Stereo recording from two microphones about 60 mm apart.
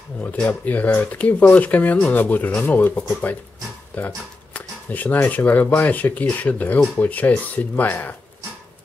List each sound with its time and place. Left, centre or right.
0.2 s speech: left